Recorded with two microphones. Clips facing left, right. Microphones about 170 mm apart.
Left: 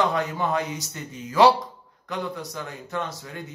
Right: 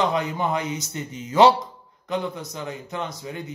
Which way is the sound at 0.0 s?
20° right (ahead or behind).